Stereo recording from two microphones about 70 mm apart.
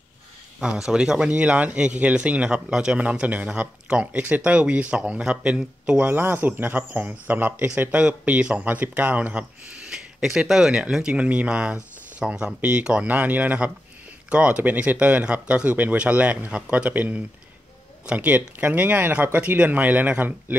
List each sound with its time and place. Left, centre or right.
0.6 s speech: centre
6.0 s speech: right